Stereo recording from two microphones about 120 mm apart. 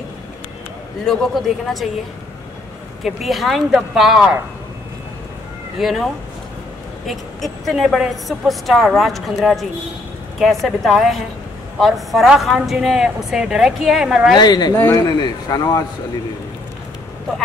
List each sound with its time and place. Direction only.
1.0 s a woman's voice: 5° left (ahead or behind)
3.0 s a woman's voice: centre (ahead or behind)
5.8 s a woman's voice: centre (ahead or behind)
7.1 s a woman's voice: centre (ahead or behind)
14.3 s speech: 35° left (ahead or behind)
14.7 s speech: 20° left (ahead or behind)
15.0 s speech: 35° left (ahead or behind)